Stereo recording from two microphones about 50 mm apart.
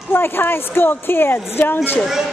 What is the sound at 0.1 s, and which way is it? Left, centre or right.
A woman's voice, left.